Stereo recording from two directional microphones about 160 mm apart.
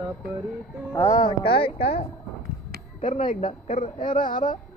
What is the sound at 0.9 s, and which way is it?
Speech, 20° left (ahead or behind).